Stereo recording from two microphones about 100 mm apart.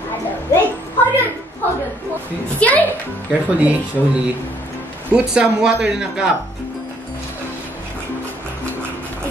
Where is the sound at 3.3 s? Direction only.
15° right (ahead or behind).